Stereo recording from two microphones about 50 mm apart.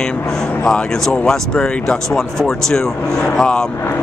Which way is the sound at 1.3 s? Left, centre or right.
Centre.